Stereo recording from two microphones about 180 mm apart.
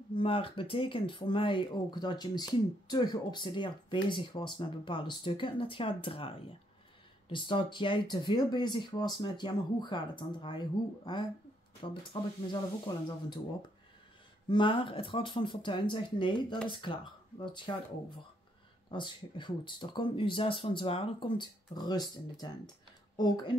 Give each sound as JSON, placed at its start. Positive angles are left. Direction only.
{"t": 0.1, "sound": "speech", "side_deg": 30}
{"t": 14.5, "sound": "speech", "side_deg": 25}